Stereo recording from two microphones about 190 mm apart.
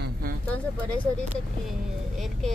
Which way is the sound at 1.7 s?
Centre (ahead or behind).